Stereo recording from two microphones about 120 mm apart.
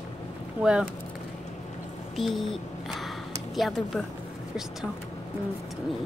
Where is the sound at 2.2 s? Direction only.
Centre (ahead or behind).